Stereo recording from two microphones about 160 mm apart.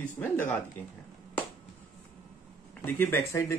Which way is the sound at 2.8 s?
15° left (ahead or behind).